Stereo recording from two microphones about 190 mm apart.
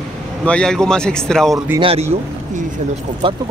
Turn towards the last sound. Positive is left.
turn(degrees=-25)  # may be behind; listen again after turning